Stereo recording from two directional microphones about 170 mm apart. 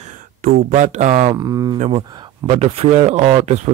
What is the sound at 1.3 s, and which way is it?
Speech, 20° right (ahead or behind).